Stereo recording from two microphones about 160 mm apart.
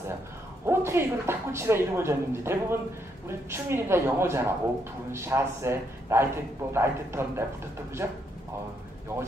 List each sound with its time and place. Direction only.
0.7 s speech: 15° right (ahead or behind)